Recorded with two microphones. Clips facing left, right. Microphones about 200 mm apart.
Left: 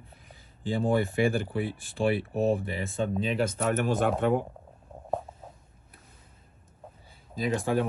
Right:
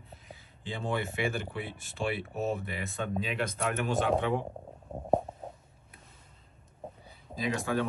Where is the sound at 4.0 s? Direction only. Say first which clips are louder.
Left 3 dB; 55° left (ahead or behind).